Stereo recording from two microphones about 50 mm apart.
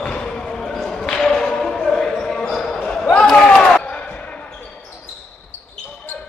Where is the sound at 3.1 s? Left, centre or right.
Left.